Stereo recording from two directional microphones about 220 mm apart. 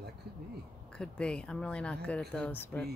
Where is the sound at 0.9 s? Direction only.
5° left (ahead or behind).